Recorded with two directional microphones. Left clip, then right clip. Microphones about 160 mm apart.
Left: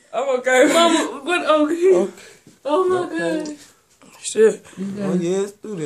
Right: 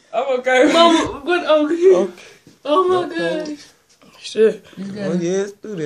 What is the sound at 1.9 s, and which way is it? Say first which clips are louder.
Speech: right 4 dB; centre (ahead or behind).